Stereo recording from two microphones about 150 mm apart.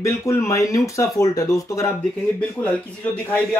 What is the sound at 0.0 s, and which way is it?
Speech, 20° left (ahead or behind).